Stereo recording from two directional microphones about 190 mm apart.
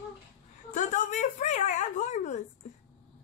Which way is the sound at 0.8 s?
40° left (ahead or behind).